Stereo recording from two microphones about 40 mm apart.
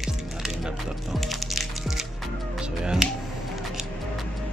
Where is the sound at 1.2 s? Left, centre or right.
Centre.